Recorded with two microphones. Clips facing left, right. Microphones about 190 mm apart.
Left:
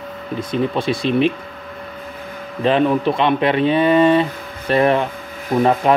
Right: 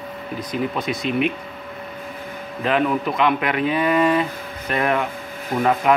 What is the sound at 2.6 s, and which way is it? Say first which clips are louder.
Speech: left 5 dB; 30° left (ahead or behind).